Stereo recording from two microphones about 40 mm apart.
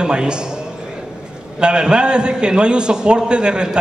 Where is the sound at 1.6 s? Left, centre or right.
Right.